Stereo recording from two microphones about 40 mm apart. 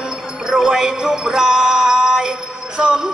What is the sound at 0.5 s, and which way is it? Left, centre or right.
Music, centre.